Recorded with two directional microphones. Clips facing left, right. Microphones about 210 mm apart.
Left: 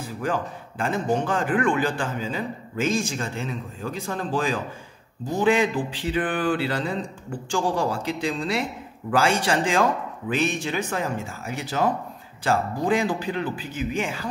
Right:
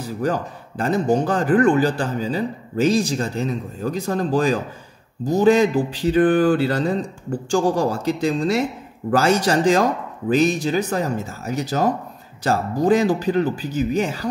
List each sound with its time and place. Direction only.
0.2 s a man's voice: 40° right (ahead or behind)